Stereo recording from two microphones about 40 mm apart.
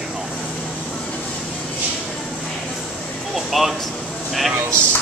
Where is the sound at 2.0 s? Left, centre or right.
Centre.